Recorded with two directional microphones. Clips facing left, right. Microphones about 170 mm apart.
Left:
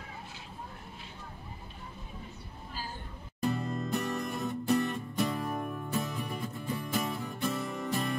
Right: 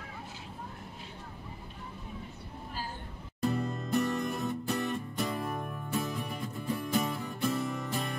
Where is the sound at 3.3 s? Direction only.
Centre (ahead or behind).